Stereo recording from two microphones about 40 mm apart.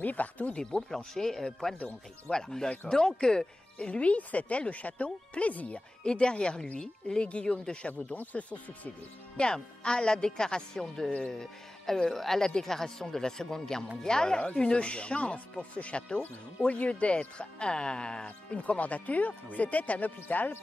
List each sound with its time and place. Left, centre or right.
0.0 s speech: left
0.7 s speech: centre
3.7 s speech: left
6.0 s speech: left
7.4 s speech: centre
8.1 s speech: left
9.4 s speech: left
11.1 s speech: left
11.3 s speech: centre
18.6 s speech: left